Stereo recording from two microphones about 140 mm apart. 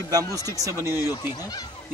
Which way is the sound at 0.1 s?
25° right (ahead or behind).